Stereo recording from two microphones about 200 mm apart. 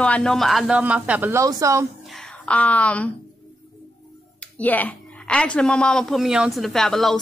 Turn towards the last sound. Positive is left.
turn(degrees=0)  # may be behind; listen again after turning